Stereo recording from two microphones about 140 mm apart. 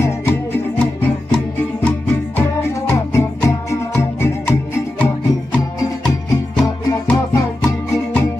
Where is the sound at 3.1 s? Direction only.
20° left (ahead or behind).